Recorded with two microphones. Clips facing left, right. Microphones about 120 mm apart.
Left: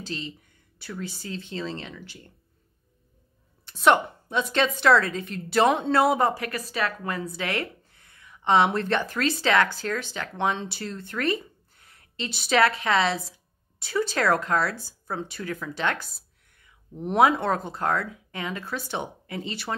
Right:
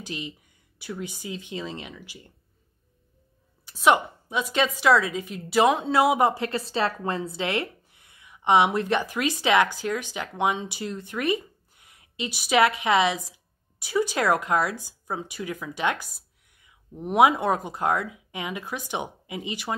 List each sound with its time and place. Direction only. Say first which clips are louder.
0.0 s a woman's voice: even; 15° right (ahead or behind)
3.6 s a woman's voice: even; 5° right (ahead or behind)